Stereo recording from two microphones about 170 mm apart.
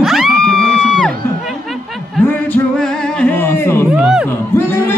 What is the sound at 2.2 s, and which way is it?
Singing, 10° left (ahead or behind).